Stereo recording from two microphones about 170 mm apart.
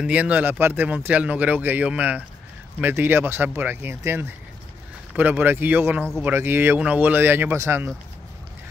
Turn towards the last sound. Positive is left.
turn(degrees=-15)  # may be behind; listen again after turning